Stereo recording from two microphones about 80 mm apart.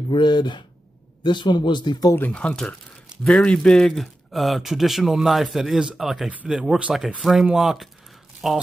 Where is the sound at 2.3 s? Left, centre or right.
Centre.